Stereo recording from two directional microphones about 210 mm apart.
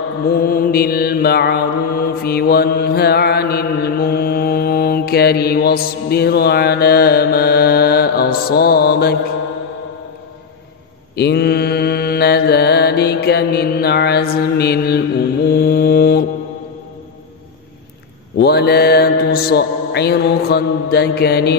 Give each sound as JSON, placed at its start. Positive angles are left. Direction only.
{"t": 0.3, "sound": "mantra", "side_deg": 45}
{"t": 11.1, "sound": "mantra", "side_deg": 50}
{"t": 18.4, "sound": "mantra", "side_deg": 50}